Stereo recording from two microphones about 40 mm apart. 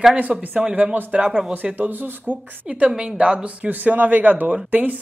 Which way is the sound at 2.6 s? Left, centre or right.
Right.